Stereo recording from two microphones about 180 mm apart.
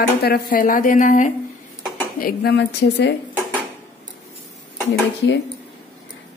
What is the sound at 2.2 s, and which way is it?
Speech, 60° left (ahead or behind).